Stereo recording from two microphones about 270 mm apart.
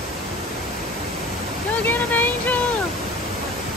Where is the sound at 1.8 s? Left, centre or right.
Centre.